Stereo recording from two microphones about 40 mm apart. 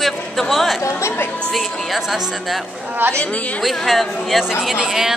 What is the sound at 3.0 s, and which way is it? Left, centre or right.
Speech, right.